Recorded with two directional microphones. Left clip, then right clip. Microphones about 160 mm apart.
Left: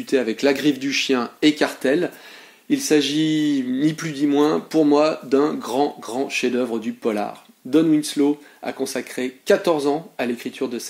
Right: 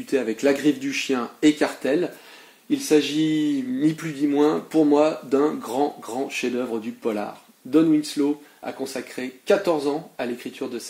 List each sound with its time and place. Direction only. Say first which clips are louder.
0.0 s speech: left 2 dB; 45° left (ahead or behind)
1.8 s speech: left 3 dB; 55° left (ahead or behind)